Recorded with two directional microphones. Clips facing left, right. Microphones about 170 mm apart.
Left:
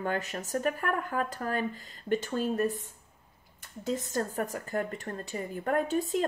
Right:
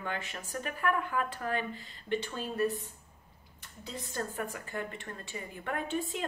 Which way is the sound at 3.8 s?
45° left (ahead or behind).